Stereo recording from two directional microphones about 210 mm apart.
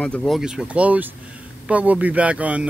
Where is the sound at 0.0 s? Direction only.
5° left (ahead or behind).